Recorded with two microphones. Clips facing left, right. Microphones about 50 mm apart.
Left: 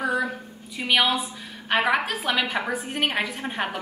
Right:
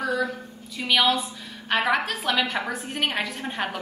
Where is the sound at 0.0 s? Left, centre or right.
Centre.